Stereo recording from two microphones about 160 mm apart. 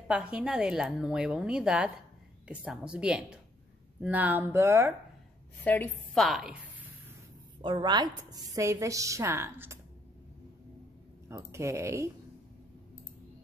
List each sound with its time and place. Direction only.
0.1 s a woman's voice: 5° right (ahead or behind)
5.6 s a woman's voice: 10° left (ahead or behind)
6.2 s a woman's voice: centre (ahead or behind)
7.6 s a woman's voice: 30° right (ahead or behind)
11.2 s speech: 15° right (ahead or behind)